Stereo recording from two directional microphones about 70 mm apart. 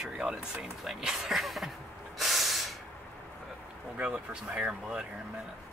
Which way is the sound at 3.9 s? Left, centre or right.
Centre.